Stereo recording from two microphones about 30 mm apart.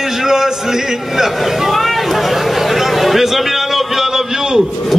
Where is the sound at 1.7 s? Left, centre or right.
Centre.